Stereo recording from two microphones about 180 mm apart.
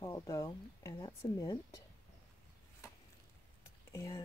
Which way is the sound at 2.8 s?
15° left (ahead or behind).